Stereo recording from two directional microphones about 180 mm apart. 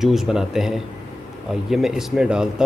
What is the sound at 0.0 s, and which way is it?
Speech, centre (ahead or behind).